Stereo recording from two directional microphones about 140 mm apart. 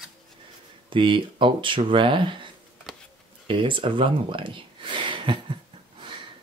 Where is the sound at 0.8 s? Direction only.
35° right (ahead or behind).